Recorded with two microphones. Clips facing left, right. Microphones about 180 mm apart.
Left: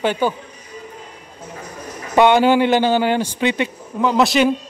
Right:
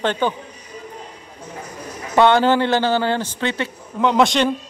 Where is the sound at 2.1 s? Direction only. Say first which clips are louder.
Left 2 dB; 15° left (ahead or behind).